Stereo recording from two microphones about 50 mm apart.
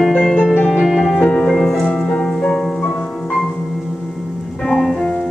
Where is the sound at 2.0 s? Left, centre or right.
Left.